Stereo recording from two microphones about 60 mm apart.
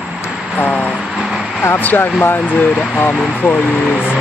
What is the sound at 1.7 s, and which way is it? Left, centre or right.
Speech, left.